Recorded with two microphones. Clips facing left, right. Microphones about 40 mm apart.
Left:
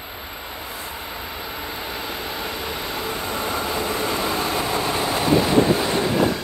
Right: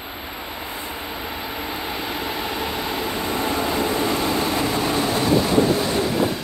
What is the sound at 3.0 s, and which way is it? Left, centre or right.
Vehicle, centre.